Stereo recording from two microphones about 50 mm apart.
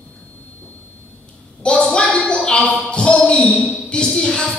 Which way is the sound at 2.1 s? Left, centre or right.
Left.